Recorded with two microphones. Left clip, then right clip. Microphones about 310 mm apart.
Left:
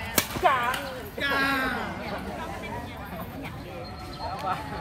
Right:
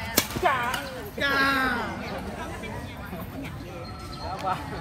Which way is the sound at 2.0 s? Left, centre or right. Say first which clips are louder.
Even; left.